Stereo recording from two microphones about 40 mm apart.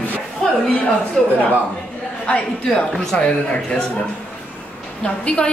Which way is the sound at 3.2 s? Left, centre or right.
Left.